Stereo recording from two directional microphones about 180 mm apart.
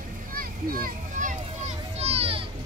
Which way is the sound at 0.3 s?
55° right (ahead or behind).